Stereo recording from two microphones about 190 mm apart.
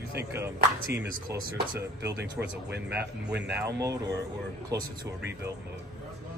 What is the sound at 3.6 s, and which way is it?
A man's voice, 15° right (ahead or behind).